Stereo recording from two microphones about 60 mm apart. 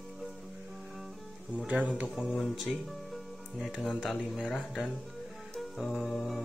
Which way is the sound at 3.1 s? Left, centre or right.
Centre.